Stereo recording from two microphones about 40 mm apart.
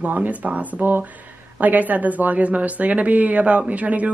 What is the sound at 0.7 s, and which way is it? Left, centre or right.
Speech, right.